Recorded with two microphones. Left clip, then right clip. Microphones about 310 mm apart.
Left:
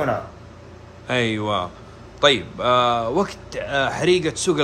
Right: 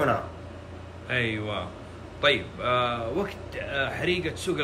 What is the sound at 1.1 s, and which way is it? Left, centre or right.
A man's voice, centre.